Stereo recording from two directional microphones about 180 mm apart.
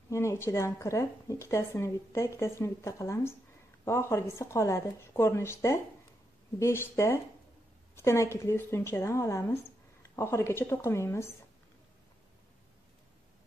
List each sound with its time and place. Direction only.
0.1 s a woman's voice: 15° left (ahead or behind)